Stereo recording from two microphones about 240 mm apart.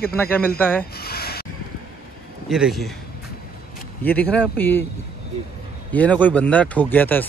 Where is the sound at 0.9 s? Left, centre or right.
Left.